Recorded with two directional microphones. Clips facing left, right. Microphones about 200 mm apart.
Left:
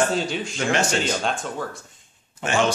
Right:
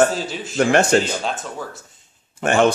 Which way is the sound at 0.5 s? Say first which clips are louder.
Right 9 dB; 55° right (ahead or behind).